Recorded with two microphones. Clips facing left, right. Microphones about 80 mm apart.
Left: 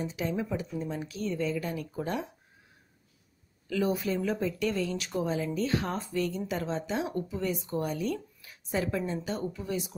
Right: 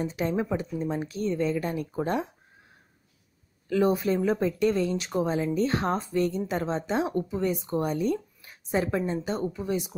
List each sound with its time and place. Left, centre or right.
0.0 s speech: right
3.6 s speech: right